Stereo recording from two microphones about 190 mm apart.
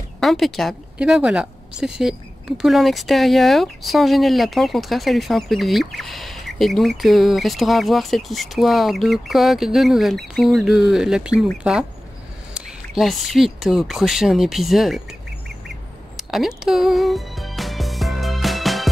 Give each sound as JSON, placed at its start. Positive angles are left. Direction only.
{"t": 0.2, "sound": "speech", "side_deg": 0}
{"t": 16.2, "sound": "music", "side_deg": 0}